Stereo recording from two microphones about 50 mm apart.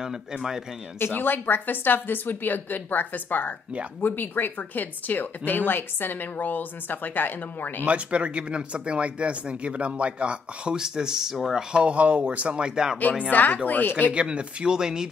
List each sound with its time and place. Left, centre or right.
0.0 s speech: centre
0.9 s speech: left
7.8 s speech: right; by 11.6 s centre
11.7 s speech: right
13.3 s speech: left
14.1 s speech: right